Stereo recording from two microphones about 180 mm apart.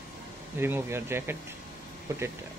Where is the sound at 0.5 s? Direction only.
10° right (ahead or behind).